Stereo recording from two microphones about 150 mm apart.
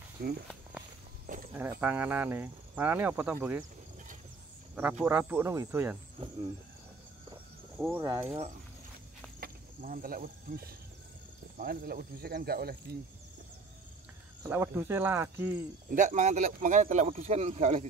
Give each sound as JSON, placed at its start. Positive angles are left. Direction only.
{"t": 0.2, "sound": "speech", "side_deg": -90}
{"t": 1.5, "sound": "speech", "side_deg": -10}
{"t": 4.7, "sound": "speech", "side_deg": -10}
{"t": 7.7, "sound": "a sound", "side_deg": -5}
{"t": 8.0, "sound": "speech", "side_deg": -20}
{"t": 9.4, "sound": "speech", "side_deg": -70}
{"t": 14.5, "sound": "speech", "side_deg": -15}
{"t": 15.9, "sound": "speech", "side_deg": -55}